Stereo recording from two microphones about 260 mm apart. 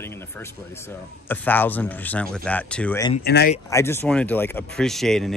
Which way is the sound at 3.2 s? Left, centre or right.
Left.